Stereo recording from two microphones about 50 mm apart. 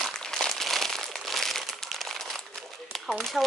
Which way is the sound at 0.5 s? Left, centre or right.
Centre.